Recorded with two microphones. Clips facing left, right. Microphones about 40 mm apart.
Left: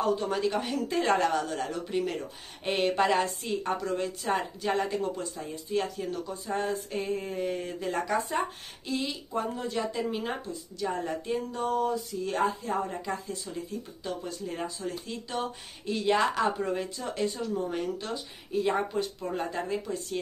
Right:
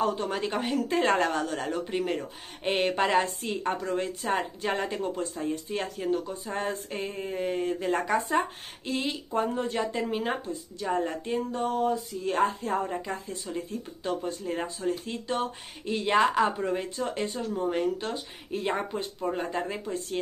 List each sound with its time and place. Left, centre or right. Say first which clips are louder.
0.0 s speech: even; right
0.3 s speech: even; right
0.9 s speech: even; right; by 4.5 s centre
4.6 s speech: left 1 dB; right
5.9 s speech: right 5 dB; right
7.2 s mantra: right 1 dB; centre
7.4 s speech: right 3 dB; right
7.9 s speech: right 1 dB; right
8.3 s speech: right 3 dB; right
12.8 s speech: right 2 dB; centre
13.6 s speech: right 2 dB; right
18.8 s speech: left 1 dB; centre